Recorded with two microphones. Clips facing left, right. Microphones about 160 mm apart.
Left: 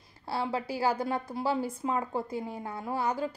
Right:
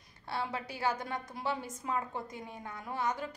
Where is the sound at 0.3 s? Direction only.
30° left (ahead or behind).